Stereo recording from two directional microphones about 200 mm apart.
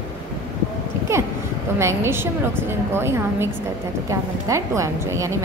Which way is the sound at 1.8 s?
15° right (ahead or behind).